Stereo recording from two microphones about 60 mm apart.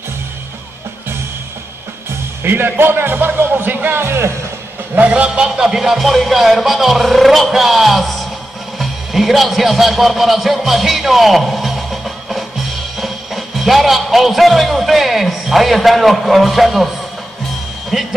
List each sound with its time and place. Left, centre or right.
2.4 s speech: right
4.0 s speech: right
4.9 s a man's voice: right; by 16.9 s centre
17.9 s speech: centre